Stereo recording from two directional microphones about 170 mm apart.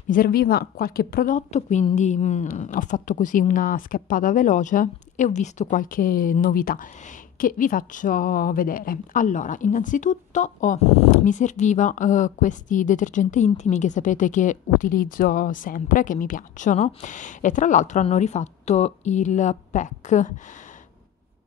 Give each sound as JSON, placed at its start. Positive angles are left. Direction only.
{"t": 0.1, "sound": "speech", "side_deg": 60}